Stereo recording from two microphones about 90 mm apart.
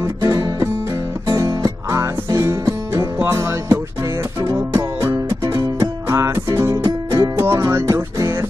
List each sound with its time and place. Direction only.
0.0 s music: 40° right (ahead or behind)